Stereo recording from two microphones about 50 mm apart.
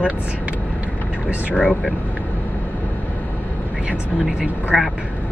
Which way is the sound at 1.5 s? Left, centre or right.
Centre.